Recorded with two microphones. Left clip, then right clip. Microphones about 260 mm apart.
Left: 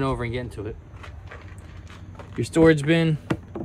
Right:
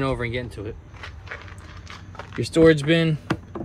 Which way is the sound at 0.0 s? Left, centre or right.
Centre.